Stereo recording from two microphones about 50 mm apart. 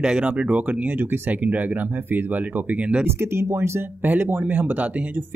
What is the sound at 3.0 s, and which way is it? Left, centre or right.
Speech, right.